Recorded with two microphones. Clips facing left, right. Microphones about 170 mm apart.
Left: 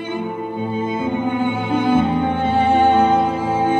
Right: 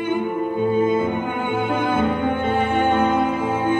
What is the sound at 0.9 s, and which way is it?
Music, 55° right (ahead or behind).